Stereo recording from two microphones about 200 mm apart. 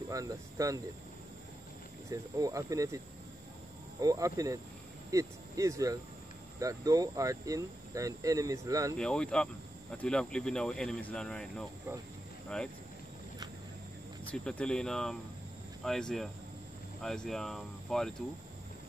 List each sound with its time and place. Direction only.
0.1 s speech: 15° right (ahead or behind)
2.0 s speech: 15° right (ahead or behind)
4.0 s speech: 20° right (ahead or behind)
8.9 s speech: 5° left (ahead or behind)
14.3 s speech: 5° left (ahead or behind)